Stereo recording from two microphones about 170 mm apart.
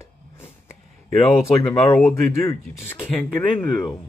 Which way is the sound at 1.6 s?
5° left (ahead or behind).